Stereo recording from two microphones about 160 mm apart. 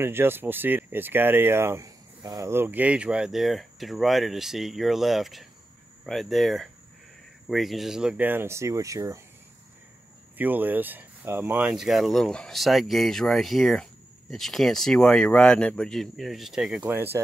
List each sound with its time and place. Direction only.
0.0 s speech: 15° right (ahead or behind)
2.5 s speech: 10° right (ahead or behind)
10.3 s speech: 10° right (ahead or behind)